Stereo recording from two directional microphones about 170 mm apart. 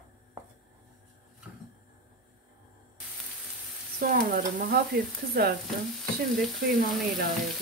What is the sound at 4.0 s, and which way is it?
Stir, 55° right (ahead or behind).